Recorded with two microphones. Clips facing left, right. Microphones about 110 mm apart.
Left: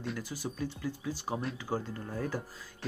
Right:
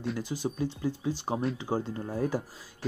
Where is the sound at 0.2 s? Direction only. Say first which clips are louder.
Right 6 dB; 20° right (ahead or behind).